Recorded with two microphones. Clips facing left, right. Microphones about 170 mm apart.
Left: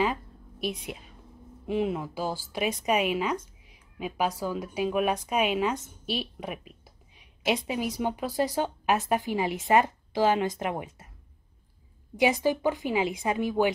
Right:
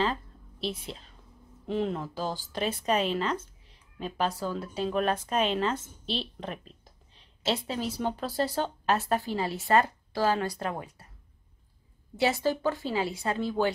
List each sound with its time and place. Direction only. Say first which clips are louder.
0.0 s a sound: left 2 dB; 10° left (ahead or behind)
1.7 s a woman's voice: left 2 dB; 10° left (ahead or behind)
12.2 s a woman's voice: left 2 dB; 15° left (ahead or behind)